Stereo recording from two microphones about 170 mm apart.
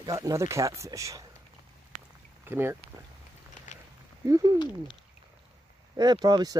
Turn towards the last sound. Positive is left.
turn(degrees=-25)  # may be behind; listen again after turning